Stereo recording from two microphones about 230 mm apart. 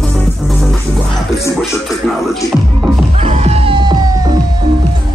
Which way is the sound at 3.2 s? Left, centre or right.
Right.